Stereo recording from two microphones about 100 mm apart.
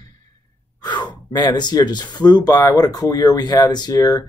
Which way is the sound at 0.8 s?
50° left (ahead or behind).